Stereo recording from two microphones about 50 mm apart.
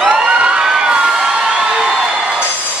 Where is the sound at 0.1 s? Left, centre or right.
Right.